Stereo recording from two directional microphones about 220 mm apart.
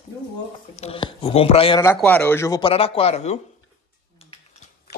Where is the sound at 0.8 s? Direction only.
25° left (ahead or behind).